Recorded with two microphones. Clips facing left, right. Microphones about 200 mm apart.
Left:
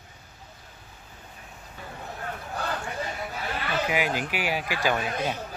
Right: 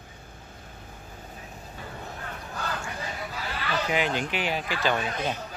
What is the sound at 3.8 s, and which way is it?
Speech, 5° left (ahead or behind).